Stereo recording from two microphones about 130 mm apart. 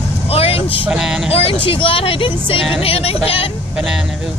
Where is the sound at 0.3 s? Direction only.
45° left (ahead or behind).